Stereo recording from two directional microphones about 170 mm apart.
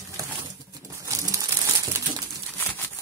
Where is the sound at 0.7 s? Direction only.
20° right (ahead or behind).